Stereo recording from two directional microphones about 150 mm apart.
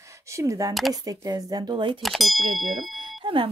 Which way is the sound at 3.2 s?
35° right (ahead or behind).